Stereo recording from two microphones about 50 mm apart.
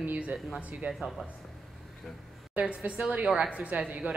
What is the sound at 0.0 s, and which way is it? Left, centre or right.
Speech, right.